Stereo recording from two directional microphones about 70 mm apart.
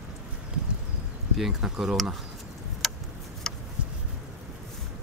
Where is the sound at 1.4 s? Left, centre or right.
Centre.